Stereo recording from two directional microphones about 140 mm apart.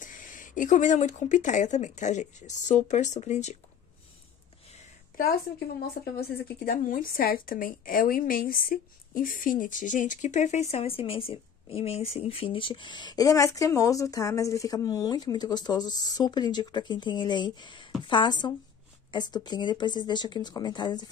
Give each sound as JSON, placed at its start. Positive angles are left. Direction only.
{"t": 0.0, "sound": "speech", "side_deg": 70}
{"t": 6.6, "sound": "a woman's voice", "side_deg": 85}